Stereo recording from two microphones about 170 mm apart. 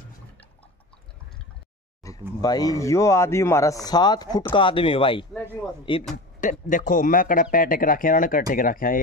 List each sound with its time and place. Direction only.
2.0 s a sound: 20° left (ahead or behind)
2.4 s a man's voice: 20° left (ahead or behind)
6.7 s speech: 50° left (ahead or behind)